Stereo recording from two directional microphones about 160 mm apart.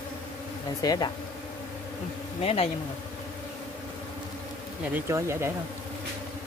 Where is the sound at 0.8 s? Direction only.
25° left (ahead or behind).